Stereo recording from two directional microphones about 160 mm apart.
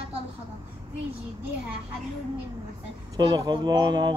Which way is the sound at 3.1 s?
25° right (ahead or behind).